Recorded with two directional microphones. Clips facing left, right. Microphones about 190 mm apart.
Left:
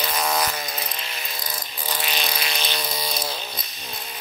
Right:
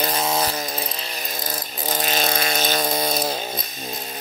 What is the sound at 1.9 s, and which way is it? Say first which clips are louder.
Insect: right 6 dB; 45° right (ahead or behind).